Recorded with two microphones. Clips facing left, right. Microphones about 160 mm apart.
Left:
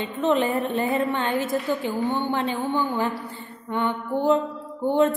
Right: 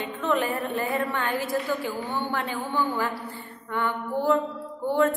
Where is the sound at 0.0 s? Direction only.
20° left (ahead or behind).